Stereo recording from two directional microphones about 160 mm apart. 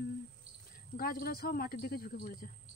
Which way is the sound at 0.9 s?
70° left (ahead or behind).